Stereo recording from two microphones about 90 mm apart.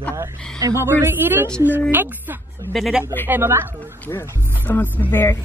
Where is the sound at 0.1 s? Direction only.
35° right (ahead or behind).